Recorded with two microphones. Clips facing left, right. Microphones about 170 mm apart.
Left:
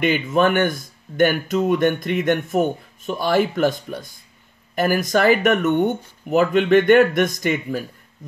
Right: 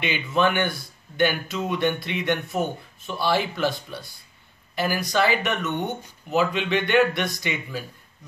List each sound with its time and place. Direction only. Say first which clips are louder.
0.0 s speech: left 5 dB; 45° left (ahead or behind)